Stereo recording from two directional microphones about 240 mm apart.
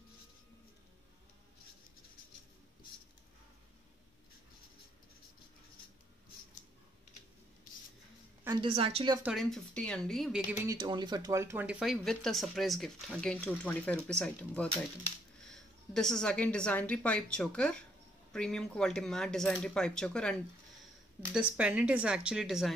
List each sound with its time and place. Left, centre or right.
8.5 s a woman's voice: right
9.2 s speech: centre
10.7 s a woman's voice: centre